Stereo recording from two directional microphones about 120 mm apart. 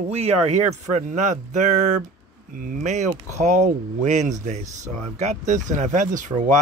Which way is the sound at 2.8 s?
90° right.